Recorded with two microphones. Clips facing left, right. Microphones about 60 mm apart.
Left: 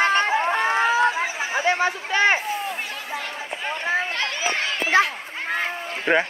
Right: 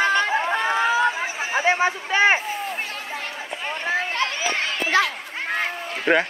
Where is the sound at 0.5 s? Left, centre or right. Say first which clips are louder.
Even; left.